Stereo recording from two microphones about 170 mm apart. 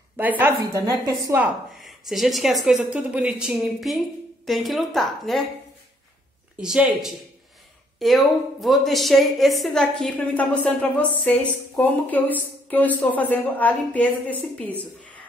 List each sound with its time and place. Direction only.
0.2 s a woman's voice: 10° right (ahead or behind)
1.8 s a woman's voice: centre (ahead or behind)
6.6 s a woman's voice: 5° right (ahead or behind)